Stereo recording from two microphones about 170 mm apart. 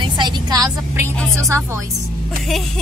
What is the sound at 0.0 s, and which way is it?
Vehicle, 25° right (ahead or behind).